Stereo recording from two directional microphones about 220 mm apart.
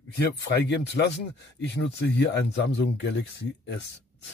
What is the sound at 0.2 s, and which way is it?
Speech, 50° left (ahead or behind).